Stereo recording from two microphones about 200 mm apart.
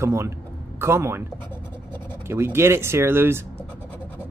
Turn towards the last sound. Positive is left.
turn(degrees=-10)  # may be behind; listen again after turning